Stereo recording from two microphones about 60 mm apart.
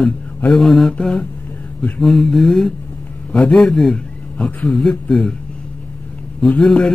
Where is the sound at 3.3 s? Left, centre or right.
Centre.